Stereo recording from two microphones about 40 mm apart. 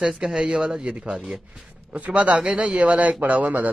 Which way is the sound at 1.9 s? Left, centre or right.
Right.